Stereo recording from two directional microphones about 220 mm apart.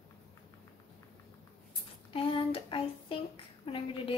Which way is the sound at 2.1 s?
25° left (ahead or behind).